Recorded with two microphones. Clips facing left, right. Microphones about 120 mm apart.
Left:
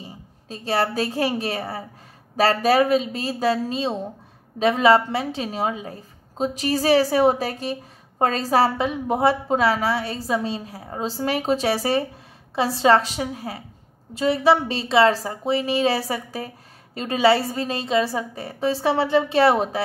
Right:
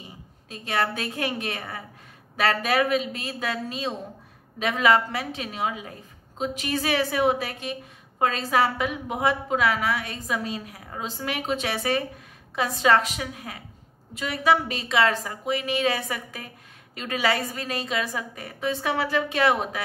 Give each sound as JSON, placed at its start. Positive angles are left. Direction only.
{"t": 0.0, "sound": "a woman's voice", "side_deg": 35}